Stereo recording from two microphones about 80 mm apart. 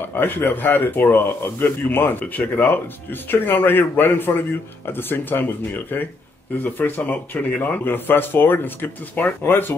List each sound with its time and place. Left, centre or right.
0.1 s a man's voice: left